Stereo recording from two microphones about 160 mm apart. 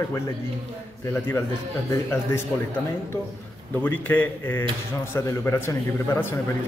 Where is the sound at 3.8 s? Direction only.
10° left (ahead or behind).